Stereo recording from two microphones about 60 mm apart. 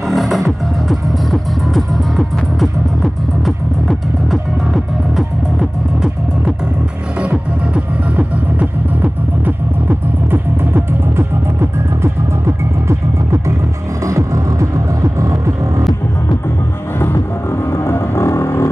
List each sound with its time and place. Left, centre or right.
0.1 s music: centre
7.2 s music: centre; by 11.2 s right
14.0 s music: right
17.6 s music: left